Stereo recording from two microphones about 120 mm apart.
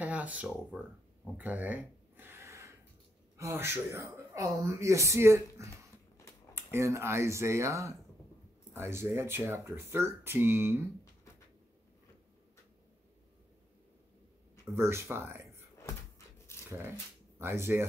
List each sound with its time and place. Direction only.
0.0 s speech: 10° right (ahead or behind)
1.3 s a sound: 10° right (ahead or behind)
3.3 s speech: 25° right (ahead or behind)
14.7 s speech: 20° right (ahead or behind)
16.5 s a sound: 20° left (ahead or behind)
17.4 s speech: 20° right (ahead or behind)